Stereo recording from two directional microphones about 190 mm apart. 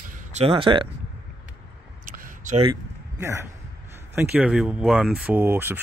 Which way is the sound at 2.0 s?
45° right (ahead or behind).